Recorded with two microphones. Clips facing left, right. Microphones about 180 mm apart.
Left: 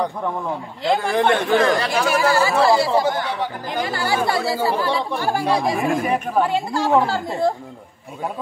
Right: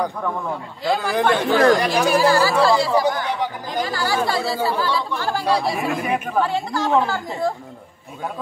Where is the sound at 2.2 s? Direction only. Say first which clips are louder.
Left 2 dB; 20° left (ahead or behind).